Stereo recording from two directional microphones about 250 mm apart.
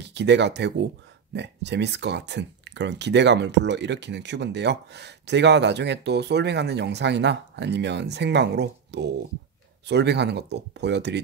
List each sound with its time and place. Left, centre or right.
0.0 s speech: right